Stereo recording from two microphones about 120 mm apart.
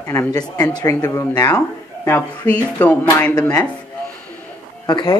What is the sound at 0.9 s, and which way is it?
Speech, 15° left (ahead or behind).